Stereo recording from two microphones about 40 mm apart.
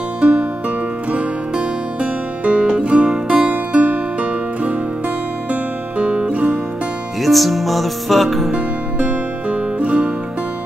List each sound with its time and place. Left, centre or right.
0.2 s music: right
1.6 s music: right
7.2 s music: centre
9.0 s music: right